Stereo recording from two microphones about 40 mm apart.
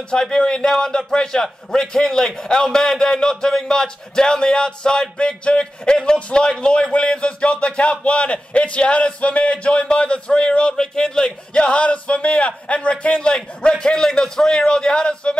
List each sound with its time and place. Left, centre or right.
0.1 s a man's voice: centre